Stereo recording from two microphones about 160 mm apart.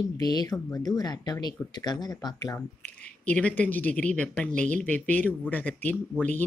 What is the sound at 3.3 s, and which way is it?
Speech, 10° left (ahead or behind).